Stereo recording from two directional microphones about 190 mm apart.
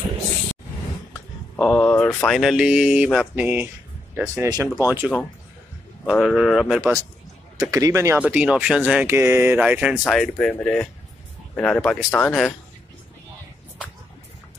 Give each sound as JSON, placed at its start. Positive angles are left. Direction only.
{"t": 1.6, "sound": "a sound", "side_deg": 0}
{"t": 2.2, "sound": "speech", "side_deg": 0}
{"t": 4.4, "sound": "speech", "side_deg": -20}
{"t": 4.6, "sound": "speech", "side_deg": -10}
{"t": 7.6, "sound": "speech", "side_deg": -15}